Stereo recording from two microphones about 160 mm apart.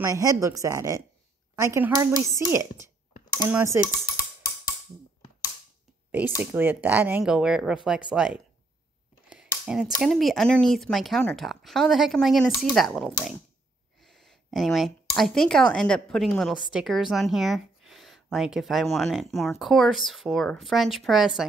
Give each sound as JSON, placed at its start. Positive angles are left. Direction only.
{"t": 0.0, "sound": "speech", "side_deg": -20}
{"t": 6.4, "sound": "speech", "side_deg": -10}
{"t": 9.7, "sound": "speech", "side_deg": -5}